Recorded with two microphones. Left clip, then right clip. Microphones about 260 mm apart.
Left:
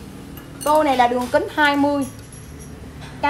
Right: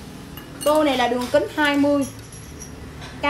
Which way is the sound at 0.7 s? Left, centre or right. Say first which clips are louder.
Left 5 dB; centre.